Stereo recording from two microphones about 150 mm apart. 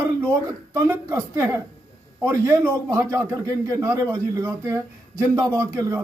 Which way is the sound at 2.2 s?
15° right (ahead or behind).